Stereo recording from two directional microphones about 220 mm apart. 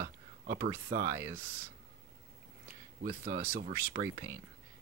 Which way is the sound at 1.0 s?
15° right (ahead or behind).